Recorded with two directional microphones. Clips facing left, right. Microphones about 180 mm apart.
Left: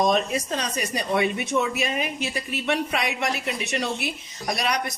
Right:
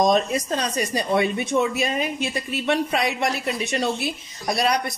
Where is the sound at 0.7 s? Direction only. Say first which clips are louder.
Right 3 dB; 35° right (ahead or behind).